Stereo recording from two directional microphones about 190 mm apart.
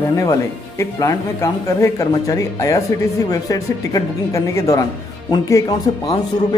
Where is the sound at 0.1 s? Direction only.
15° left (ahead or behind).